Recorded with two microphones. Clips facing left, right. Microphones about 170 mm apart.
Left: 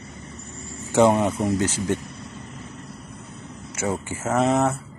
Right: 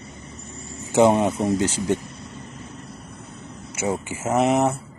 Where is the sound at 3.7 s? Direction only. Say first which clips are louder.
Right 1 dB; 15° right (ahead or behind).